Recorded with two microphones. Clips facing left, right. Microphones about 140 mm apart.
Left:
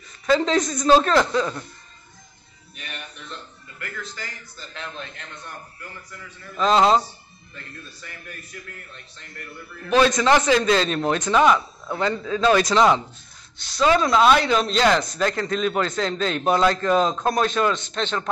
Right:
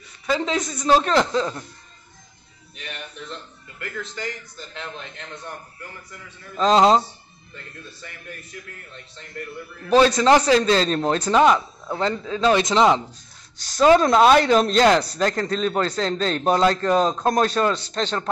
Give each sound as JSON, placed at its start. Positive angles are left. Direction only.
{"t": 0.3, "sound": "speech", "side_deg": -10}
{"t": 4.0, "sound": "a man's voice", "side_deg": -20}
{"t": 6.5, "sound": "speech", "side_deg": -30}
{"t": 9.8, "sound": "a man's voice", "side_deg": -35}
{"t": 13.6, "sound": "speech", "side_deg": -40}